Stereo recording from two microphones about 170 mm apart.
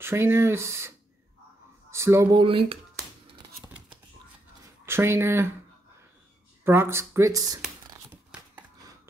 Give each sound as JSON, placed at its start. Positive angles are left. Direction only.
{"t": 0.0, "sound": "speech", "side_deg": -15}
{"t": 2.4, "sound": "speech", "side_deg": -30}
{"t": 4.8, "sound": "speech", "side_deg": -15}
{"t": 6.6, "sound": "speech", "side_deg": -15}
{"t": 7.6, "sound": "a sound", "side_deg": -5}
{"t": 8.4, "sound": "a sound", "side_deg": -20}